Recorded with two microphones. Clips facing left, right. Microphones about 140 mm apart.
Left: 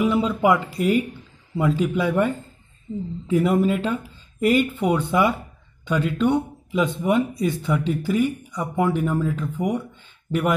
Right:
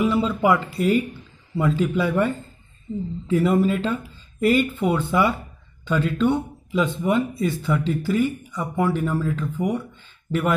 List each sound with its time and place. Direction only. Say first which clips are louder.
0.0 s speech: left 1 dB; 15° left (ahead or behind)